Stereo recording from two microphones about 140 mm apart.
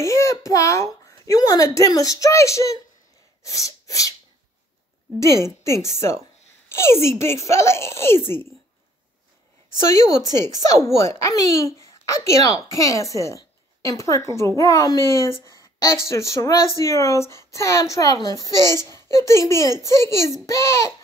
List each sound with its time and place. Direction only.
0.0 s speech: 20° left (ahead or behind)
3.4 s sneeze: 25° left (ahead or behind)
5.2 s a woman's voice: 20° left (ahead or behind)
10.6 s speech: 20° left (ahead or behind)